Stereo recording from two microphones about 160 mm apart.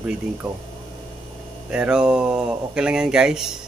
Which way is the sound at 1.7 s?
5° right (ahead or behind).